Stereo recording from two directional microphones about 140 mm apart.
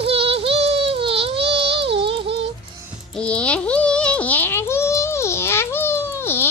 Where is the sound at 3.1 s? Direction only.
5° left (ahead or behind).